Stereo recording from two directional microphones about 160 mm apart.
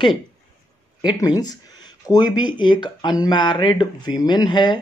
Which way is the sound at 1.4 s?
25° left (ahead or behind).